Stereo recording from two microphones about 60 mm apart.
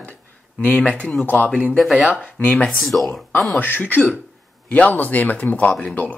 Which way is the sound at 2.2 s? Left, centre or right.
Left.